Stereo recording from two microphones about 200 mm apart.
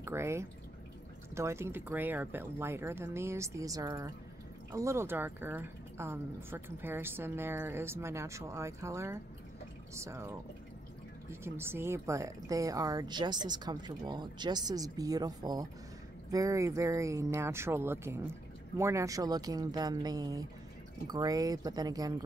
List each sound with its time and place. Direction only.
0.0 s speech: 15° right (ahead or behind)